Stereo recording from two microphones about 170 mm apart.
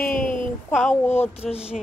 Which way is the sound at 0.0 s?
55° left (ahead or behind).